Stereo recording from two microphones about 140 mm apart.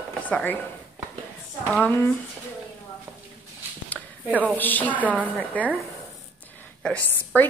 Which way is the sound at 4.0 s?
Centre (ahead or behind).